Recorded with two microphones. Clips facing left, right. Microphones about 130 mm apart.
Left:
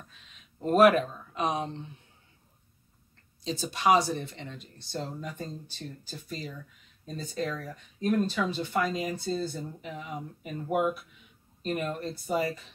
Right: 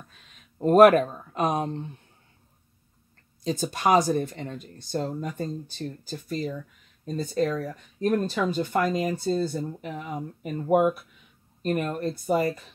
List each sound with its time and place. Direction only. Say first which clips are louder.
0.1 s speech: right 2 dB; 45° right (ahead or behind)
3.4 s speech: right 1 dB; 45° right (ahead or behind)